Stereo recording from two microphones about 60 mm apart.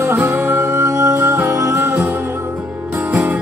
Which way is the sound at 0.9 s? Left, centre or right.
Right.